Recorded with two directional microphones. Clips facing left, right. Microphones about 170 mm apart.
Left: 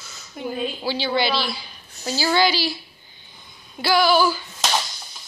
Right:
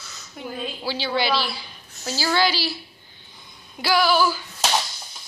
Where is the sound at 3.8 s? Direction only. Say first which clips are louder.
Left 2 dB; 5° right (ahead or behind).